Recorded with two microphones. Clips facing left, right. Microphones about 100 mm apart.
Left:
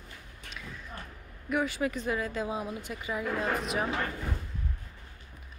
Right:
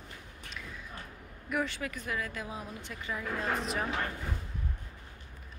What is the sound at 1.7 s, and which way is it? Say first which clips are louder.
Speech: left 7 dB; 20° left (ahead or behind).